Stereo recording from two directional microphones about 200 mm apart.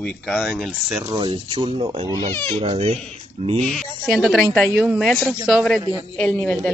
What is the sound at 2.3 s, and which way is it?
Speech, 10° left (ahead or behind).